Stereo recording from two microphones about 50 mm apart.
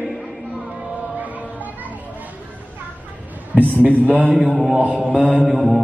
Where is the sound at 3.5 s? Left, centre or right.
Right.